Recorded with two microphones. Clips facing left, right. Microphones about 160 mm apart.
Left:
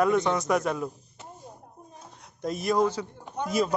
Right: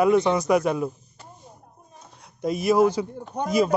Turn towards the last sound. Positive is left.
turn(degrees=-35)  # may be behind; listen again after turning